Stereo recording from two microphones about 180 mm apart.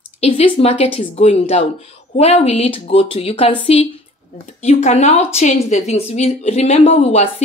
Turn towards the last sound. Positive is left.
turn(degrees=35)  # may be behind; listen again after turning